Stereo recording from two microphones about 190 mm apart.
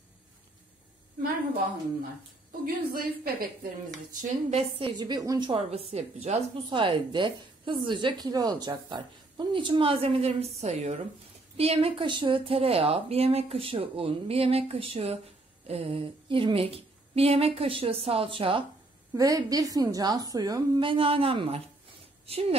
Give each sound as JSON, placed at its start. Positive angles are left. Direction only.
{"t": 2.6, "sound": "a woman's voice", "side_deg": -50}
{"t": 4.1, "sound": "a woman's voice", "side_deg": -40}